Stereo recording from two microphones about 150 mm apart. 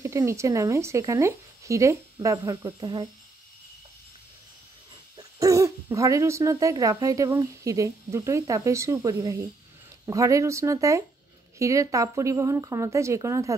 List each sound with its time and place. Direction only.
0.0 s speech: 20° right (ahead or behind)
5.1 s speech: 20° right (ahead or behind)